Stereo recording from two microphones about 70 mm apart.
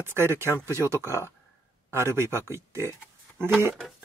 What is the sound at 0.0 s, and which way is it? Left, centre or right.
Speech, right.